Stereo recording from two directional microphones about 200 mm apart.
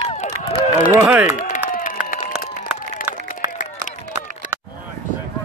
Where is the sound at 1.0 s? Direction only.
5° right (ahead or behind).